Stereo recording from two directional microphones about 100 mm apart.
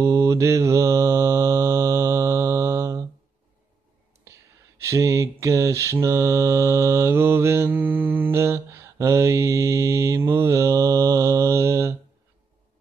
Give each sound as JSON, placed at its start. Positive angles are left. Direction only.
{"t": 0.0, "sound": "mantra", "side_deg": -35}
{"t": 4.7, "sound": "mantra", "side_deg": -30}